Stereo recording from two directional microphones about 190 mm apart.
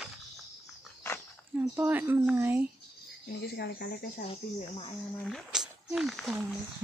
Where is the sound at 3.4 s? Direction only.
60° left (ahead or behind).